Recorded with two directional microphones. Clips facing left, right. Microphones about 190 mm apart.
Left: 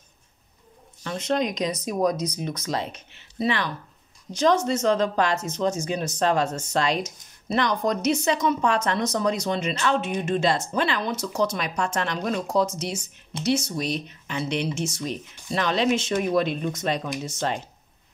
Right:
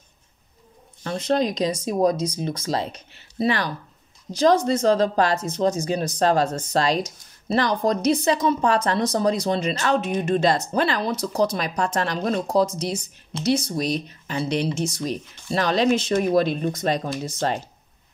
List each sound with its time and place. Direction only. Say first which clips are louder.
1.0 s a woman's voice: right 3 dB; 35° right (ahead or behind)